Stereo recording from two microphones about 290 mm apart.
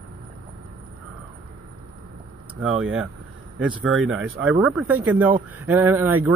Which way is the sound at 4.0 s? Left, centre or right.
Right.